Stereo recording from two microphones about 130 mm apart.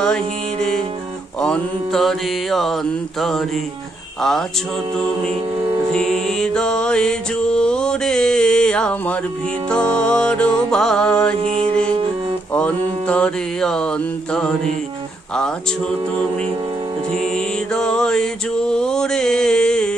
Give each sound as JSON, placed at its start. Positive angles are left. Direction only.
{"t": 0.0, "sound": "music", "side_deg": 5}
{"t": 1.4, "sound": "mantra", "side_deg": 5}
{"t": 5.9, "sound": "music", "side_deg": 5}
{"t": 9.7, "sound": "mantra", "side_deg": 5}
{"t": 11.3, "sound": "mantra", "side_deg": -50}
{"t": 12.5, "sound": "mantra", "side_deg": 10}
{"t": 17.2, "sound": "mantra", "side_deg": 5}